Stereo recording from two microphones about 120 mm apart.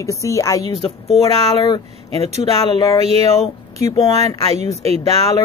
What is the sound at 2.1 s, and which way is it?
Speech, 60° right (ahead or behind).